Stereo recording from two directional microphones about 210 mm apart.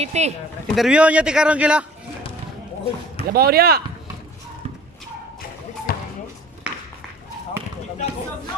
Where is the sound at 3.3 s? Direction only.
45° right (ahead or behind).